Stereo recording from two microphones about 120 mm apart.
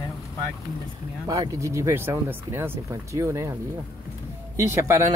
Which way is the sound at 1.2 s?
30° right (ahead or behind).